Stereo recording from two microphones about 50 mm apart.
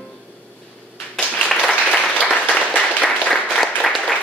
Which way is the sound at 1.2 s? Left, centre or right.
Centre.